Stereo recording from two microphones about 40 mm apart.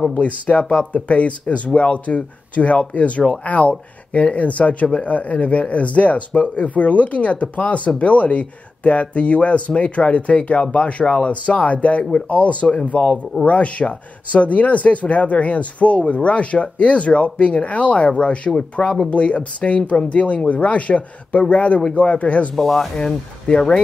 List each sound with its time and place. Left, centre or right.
0.1 s speech: left
22.6 s speech: centre
22.9 s speech: left